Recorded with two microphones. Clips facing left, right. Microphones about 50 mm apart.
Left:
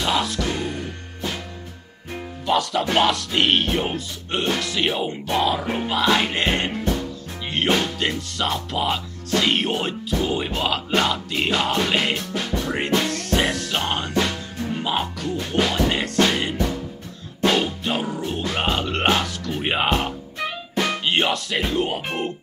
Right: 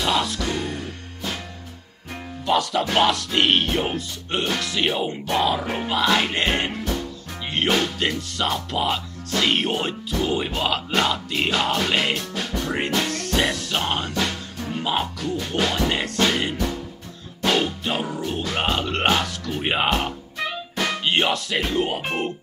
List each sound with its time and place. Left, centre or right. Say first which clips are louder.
0.0 s music: even; centre
2.4 s speech: even; centre
6.8 s music: left 3 dB; left
7.5 s speech: even; centre
12.6 s music: even; centre
13.0 s speech: left 1 dB; centre
14.2 s music: left 1 dB; centre
15.5 s speech: left 2 dB; centre
15.9 s music: left 1 dB; centre
20.8 s speech: even; centre